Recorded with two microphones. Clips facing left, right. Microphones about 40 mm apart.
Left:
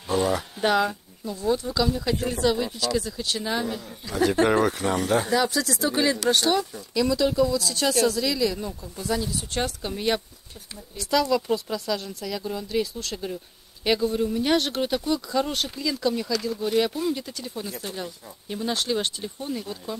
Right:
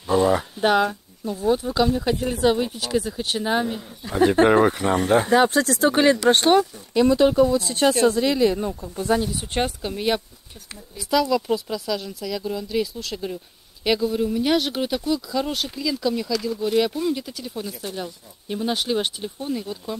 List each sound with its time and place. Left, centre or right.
0.1 s speech: right
9.8 s speech: centre